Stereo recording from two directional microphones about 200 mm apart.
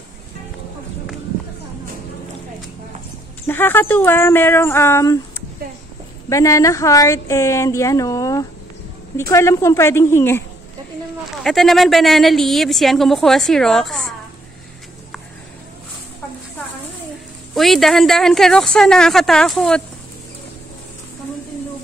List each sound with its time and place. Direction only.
3.4 s speech: 10° left (ahead or behind)
6.2 s speech: 15° left (ahead or behind)
11.4 s a woman's voice: centre (ahead or behind)
17.6 s a woman's voice: centre (ahead or behind)